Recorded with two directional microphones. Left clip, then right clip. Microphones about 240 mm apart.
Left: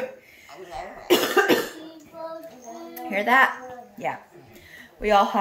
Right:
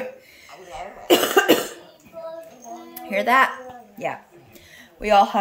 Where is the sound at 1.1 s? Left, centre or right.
Right.